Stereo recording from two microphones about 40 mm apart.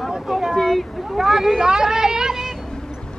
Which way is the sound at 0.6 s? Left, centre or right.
Centre.